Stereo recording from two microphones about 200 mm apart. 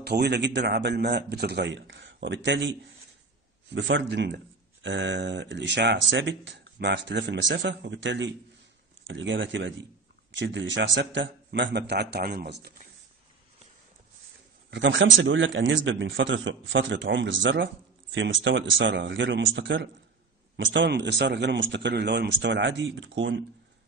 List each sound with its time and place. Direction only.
0.0 s speech: 55° right (ahead or behind)
3.7 s speech: 70° right (ahead or behind)
14.7 s speech: 65° right (ahead or behind)